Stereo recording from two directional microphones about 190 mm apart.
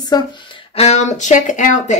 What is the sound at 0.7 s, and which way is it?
A woman's voice, 35° left (ahead or behind).